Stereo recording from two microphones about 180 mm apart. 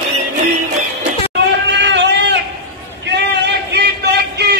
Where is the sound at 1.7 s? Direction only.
80° right.